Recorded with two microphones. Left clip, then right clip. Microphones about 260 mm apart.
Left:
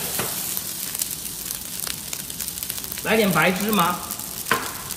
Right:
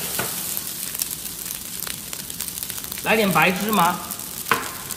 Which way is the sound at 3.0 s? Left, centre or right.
Centre.